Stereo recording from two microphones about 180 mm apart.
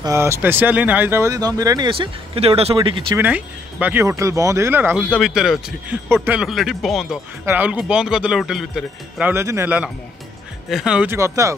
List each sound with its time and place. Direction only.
0.0 s speech: 15° right (ahead or behind)
3.2 s speech: 10° right (ahead or behind)
5.1 s speech: centre (ahead or behind)